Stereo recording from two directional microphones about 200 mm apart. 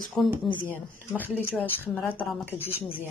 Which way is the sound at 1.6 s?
10° left (ahead or behind).